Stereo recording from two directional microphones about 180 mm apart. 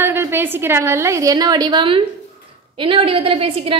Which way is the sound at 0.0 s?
15° right (ahead or behind).